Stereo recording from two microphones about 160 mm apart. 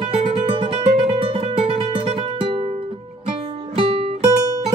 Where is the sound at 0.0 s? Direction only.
40° right (ahead or behind).